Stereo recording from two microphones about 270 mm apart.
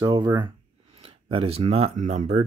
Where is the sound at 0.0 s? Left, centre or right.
Centre.